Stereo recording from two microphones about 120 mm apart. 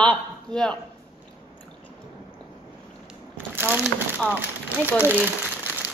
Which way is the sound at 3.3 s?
15° right (ahead or behind).